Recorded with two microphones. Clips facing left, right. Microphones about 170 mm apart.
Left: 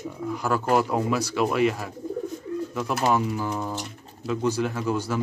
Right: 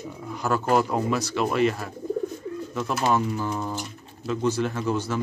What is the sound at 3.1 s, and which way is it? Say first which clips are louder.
Speech: even; 10° left (ahead or behind).